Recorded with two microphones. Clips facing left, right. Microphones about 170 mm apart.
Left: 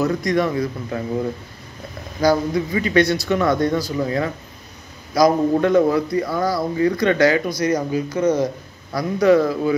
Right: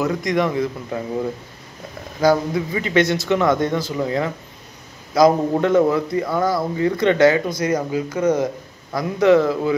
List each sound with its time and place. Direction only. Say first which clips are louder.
0.0 s speech: left 1 dB; 20° right (ahead or behind)
2.2 s speech: even; 25° right (ahead or behind)